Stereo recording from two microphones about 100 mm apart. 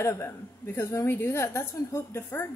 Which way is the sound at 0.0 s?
25° left (ahead or behind).